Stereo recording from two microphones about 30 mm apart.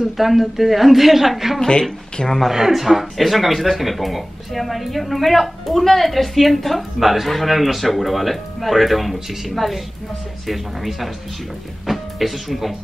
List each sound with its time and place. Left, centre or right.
0.0 s a woman's voice: centre
1.6 s speech: left
2.5 s a woman's voice: centre